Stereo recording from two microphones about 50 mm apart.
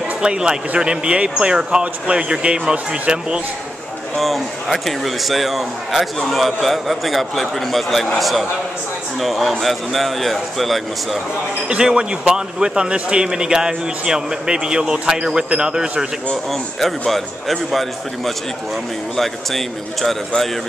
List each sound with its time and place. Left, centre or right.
0.2 s speech: centre
4.2 s a man's voice: centre
11.7 s a man's voice: centre
19.1 s a man's voice: centre